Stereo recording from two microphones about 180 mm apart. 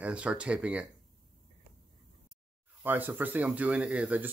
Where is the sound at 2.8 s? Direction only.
10° right (ahead or behind).